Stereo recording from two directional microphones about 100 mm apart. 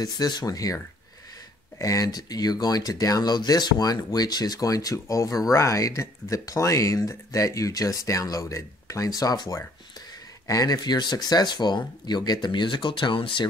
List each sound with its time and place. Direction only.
0.0 s speech: 40° left (ahead or behind)
1.8 s speech: 35° left (ahead or behind); by 13.5 s 55° left (ahead or behind)